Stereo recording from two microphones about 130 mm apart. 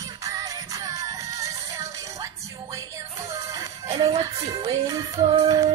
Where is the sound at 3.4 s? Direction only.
25° right (ahead or behind).